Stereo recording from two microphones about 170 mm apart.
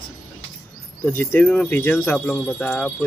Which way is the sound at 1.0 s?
10° left (ahead or behind).